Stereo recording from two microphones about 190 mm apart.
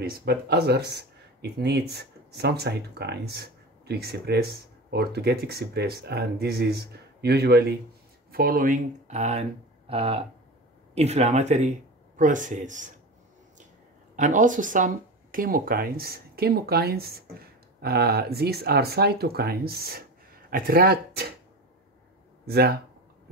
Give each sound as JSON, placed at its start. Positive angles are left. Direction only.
{"t": 0.0, "sound": "speech", "side_deg": -55}
{"t": 14.1, "sound": "speech", "side_deg": -40}
{"t": 22.5, "sound": "speech", "side_deg": -55}